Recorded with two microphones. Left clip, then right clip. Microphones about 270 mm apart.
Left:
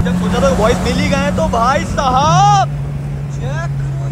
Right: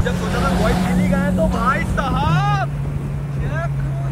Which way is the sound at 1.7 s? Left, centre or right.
Centre.